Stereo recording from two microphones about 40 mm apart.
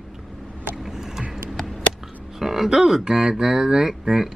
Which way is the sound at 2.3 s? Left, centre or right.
Centre.